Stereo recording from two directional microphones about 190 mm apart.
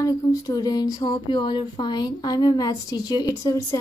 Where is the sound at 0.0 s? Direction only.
20° left (ahead or behind).